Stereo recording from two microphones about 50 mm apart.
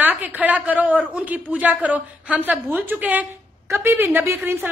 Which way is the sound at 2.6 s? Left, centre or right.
Right.